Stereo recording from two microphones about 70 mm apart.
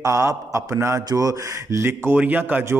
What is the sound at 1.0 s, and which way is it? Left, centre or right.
Speech, right.